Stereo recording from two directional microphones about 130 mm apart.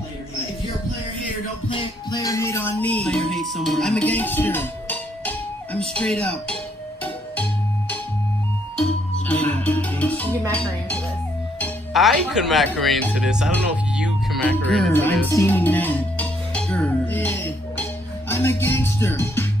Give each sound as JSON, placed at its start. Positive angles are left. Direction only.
{"t": 1.7, "sound": "music", "side_deg": 35}
{"t": 9.3, "sound": "speech", "side_deg": 10}
{"t": 11.9, "sound": "speech", "side_deg": 0}
{"t": 13.9, "sound": "music", "side_deg": -5}
{"t": 14.9, "sound": "speech", "side_deg": 15}